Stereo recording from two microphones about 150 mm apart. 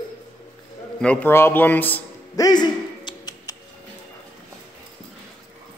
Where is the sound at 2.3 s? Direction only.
25° left (ahead or behind).